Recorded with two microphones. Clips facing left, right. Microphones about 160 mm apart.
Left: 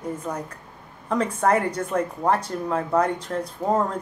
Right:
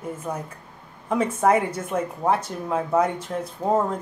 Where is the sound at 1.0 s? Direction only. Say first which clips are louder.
Right 1 dB; 10° right (ahead or behind).